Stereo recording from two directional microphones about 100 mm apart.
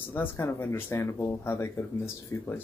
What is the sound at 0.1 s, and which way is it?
Speech, 20° left (ahead or behind).